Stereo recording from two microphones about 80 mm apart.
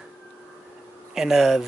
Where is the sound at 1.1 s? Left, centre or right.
Centre.